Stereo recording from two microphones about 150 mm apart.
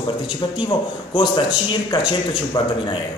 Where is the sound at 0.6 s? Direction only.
30° left (ahead or behind).